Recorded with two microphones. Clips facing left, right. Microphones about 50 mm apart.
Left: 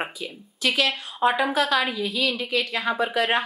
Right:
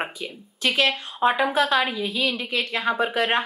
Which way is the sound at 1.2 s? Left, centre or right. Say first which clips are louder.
Right 1 dB; right.